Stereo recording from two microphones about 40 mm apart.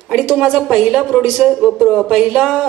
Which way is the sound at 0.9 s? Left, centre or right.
Centre.